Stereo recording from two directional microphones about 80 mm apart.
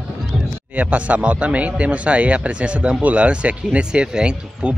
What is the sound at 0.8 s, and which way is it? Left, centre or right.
Speech, centre.